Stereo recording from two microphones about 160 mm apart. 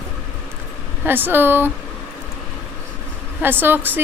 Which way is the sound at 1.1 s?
10° right (ahead or behind).